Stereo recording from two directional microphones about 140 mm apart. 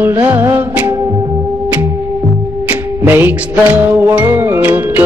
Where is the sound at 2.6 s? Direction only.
15° right (ahead or behind).